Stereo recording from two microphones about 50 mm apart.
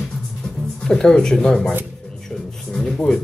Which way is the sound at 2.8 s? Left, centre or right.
Centre.